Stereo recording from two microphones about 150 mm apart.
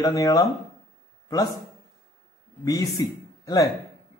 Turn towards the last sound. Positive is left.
turn(degrees=25)  # may be behind; listen again after turning